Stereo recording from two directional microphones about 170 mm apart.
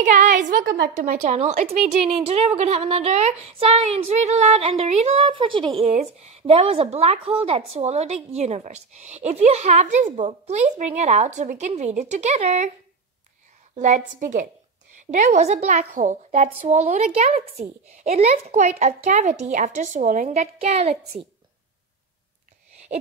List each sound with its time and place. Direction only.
0.0 s a woman's voice: 45° right (ahead or behind)
13.7 s a woman's voice: 45° right (ahead or behind)